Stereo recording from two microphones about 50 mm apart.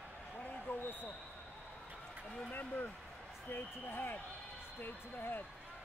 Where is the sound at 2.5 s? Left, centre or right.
Left.